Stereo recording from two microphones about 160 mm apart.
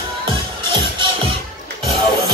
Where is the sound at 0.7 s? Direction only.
30° right (ahead or behind).